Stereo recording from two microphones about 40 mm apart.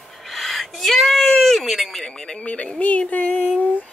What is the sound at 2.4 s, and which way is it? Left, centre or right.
Music, left.